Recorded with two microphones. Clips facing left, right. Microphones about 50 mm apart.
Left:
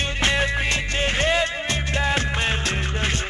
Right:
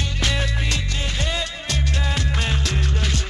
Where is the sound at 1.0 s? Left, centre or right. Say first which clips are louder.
Left 9 dB; left.